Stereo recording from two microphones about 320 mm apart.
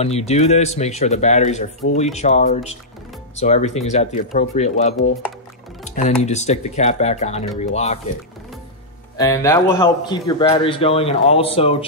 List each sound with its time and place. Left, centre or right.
0.0 s speech: centre
9.1 s speech: centre